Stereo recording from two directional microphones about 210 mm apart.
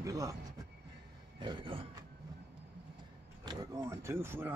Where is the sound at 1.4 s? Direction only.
25° right (ahead or behind).